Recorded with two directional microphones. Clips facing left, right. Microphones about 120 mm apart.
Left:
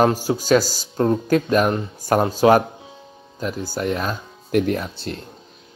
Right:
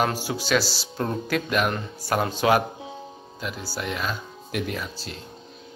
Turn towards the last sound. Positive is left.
turn(degrees=50)  # may be behind; listen again after turning